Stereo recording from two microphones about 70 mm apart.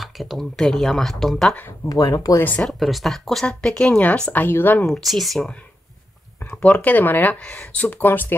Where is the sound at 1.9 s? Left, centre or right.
Left.